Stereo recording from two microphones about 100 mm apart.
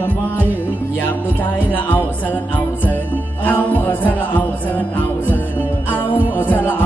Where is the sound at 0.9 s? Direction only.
15° left (ahead or behind).